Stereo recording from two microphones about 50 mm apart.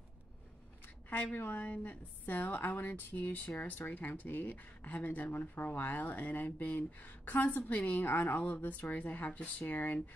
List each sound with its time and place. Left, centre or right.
1.1 s a woman's voice: left